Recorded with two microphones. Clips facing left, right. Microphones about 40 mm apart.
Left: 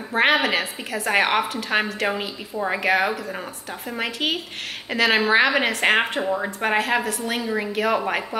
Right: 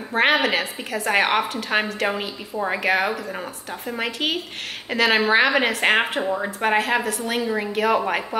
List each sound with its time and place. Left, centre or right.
0.1 s a woman's voice: centre